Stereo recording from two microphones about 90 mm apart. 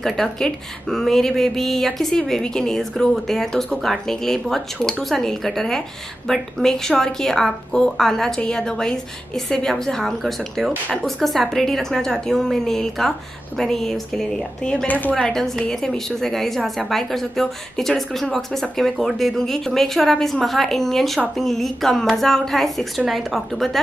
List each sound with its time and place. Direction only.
0.0 s a woman's voice: 5° left (ahead or behind)
14.9 s speech: 20° left (ahead or behind)
15.1 s a woman's voice: 5° left (ahead or behind)